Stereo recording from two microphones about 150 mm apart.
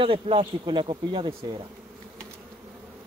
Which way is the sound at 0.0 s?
35° right (ahead or behind).